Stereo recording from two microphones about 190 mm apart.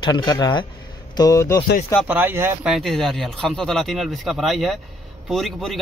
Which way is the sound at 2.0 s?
10° right (ahead or behind).